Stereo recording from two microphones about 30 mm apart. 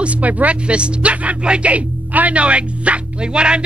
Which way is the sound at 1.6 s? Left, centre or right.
Right.